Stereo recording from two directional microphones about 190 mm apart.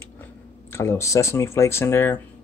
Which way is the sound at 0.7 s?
15° left (ahead or behind).